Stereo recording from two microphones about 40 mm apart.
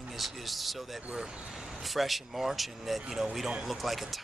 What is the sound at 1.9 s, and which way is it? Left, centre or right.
Speech, centre.